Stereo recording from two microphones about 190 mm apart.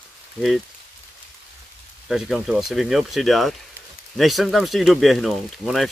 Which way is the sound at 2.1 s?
Centre (ahead or behind).